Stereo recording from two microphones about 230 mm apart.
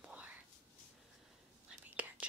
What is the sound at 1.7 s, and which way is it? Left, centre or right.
Whispering, centre.